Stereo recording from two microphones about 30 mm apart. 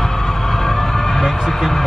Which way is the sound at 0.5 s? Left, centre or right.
Centre.